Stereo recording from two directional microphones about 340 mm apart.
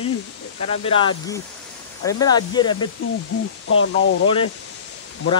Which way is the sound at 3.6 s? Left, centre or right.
Left.